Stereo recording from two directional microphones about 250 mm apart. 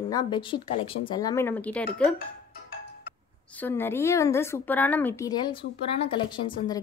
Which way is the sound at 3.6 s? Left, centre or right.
Centre.